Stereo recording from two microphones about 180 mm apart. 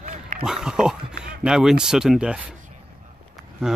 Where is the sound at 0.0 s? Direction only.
40° right (ahead or behind).